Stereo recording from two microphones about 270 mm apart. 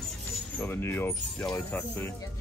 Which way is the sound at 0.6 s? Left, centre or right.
Centre.